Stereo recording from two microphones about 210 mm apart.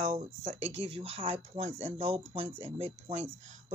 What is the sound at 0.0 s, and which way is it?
Speech, 35° right (ahead or behind).